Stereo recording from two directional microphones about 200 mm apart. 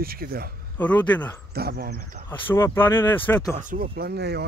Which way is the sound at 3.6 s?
40° right (ahead or behind).